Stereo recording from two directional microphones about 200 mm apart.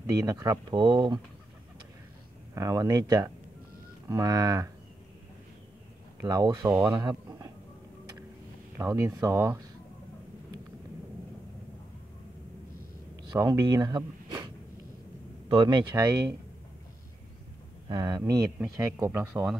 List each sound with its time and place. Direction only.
0.0 s speech: 15° right (ahead or behind)
2.5 s speech: 15° right (ahead or behind)
6.2 s speech: 20° right (ahead or behind)
8.7 s speech: 15° right (ahead or behind)
13.4 s speech: 15° right (ahead or behind)
17.8 s speech: 20° right (ahead or behind); by 19.6 s 5° right (ahead or behind)